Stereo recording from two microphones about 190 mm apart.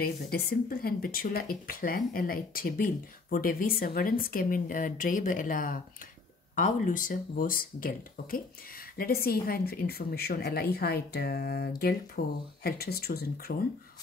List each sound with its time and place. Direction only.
0.0 s a woman's voice: 50° left (ahead or behind)